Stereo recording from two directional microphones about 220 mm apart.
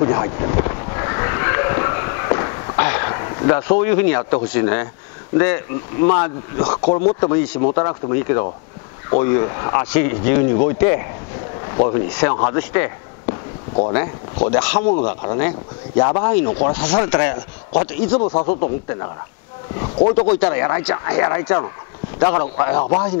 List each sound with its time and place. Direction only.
0.0 s horse: 25° left (ahead or behind)
6.0 s speech: 25° left (ahead or behind)
11.6 s boat: 25° left (ahead or behind)
12.2 s a man's voice: 20° left (ahead or behind)
13.3 s speech: 30° left (ahead or behind)